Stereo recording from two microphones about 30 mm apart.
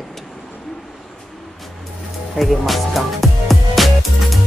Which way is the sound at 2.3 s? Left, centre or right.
Centre.